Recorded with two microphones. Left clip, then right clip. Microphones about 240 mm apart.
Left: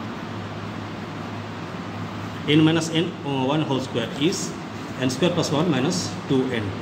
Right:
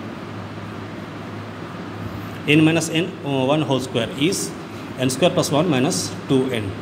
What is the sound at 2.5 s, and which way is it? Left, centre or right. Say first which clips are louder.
Speech: right 3 dB; right.